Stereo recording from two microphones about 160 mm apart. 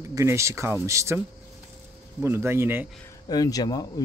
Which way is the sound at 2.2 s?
15° right (ahead or behind).